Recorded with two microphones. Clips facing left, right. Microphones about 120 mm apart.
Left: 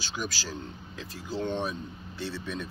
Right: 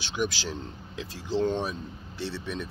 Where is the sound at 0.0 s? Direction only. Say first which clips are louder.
Right 5 dB; 20° right (ahead or behind).